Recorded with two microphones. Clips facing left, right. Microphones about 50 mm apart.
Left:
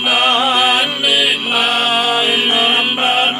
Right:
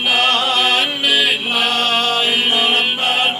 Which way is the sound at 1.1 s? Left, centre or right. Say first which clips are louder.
Left 1 dB; centre.